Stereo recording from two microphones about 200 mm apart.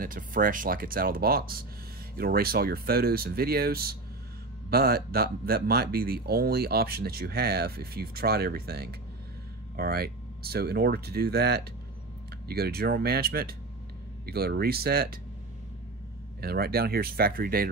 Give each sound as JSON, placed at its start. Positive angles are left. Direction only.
{"t": 0.0, "sound": "speech", "side_deg": -45}
{"t": 16.3, "sound": "speech", "side_deg": -50}